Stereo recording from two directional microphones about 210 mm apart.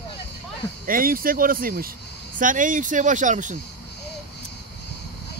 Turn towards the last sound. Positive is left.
turn(degrees=-35)  # may be behind; listen again after turning